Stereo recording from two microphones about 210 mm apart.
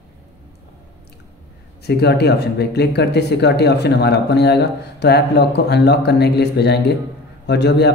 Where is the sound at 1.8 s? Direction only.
50° left (ahead or behind).